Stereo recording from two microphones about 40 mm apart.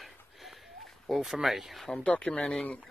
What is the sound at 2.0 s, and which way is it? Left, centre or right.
Speech, left.